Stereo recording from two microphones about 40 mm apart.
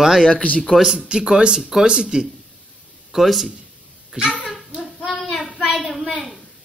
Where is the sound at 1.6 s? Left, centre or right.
Centre.